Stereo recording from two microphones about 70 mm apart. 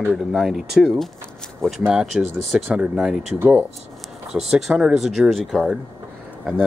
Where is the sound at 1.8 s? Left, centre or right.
Centre.